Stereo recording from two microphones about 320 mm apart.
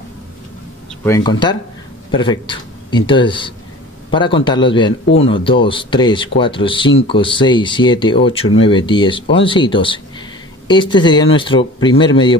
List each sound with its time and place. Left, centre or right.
1.0 s a man's voice: centre